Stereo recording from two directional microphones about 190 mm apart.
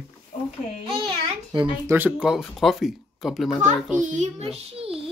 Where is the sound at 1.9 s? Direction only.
10° right (ahead or behind).